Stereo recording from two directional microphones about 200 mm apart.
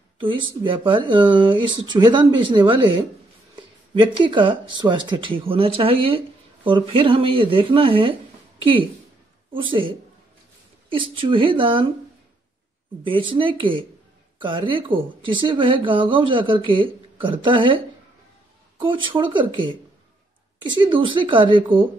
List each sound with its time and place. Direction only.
0.2 s speech: 25° right (ahead or behind)
13.0 s speech: 25° right (ahead or behind)